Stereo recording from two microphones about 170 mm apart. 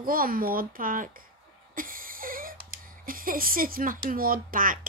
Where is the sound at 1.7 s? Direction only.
55° right (ahead or behind).